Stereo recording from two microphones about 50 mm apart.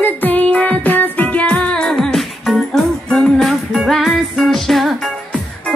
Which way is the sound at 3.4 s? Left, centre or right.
Centre.